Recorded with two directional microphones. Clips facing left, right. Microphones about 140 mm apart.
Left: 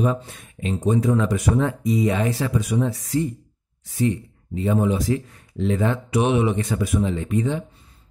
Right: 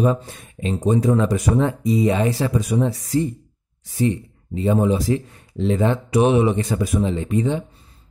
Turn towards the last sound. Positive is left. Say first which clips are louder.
# right 2 dB
turn(degrees=-25)  # may be behind; listen again after turning